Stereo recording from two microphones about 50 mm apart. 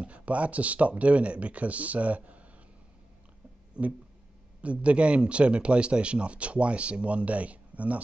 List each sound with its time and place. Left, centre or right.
0.0 s a man's voice: right
3.8 s a sound: right
4.6 s a man's voice: right